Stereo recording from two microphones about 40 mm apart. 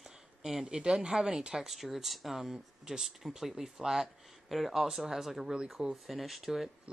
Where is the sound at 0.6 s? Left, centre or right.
Right.